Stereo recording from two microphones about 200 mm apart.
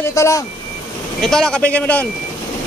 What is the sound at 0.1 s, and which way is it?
Speech, 15° left (ahead or behind).